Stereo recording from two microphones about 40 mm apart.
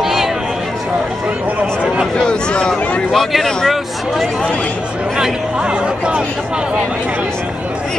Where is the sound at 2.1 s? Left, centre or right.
Left.